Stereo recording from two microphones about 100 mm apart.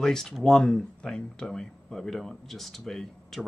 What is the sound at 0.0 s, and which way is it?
Speech, 5° left (ahead or behind).